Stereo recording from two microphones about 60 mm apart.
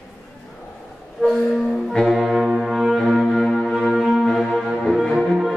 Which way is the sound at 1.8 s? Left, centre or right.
Centre.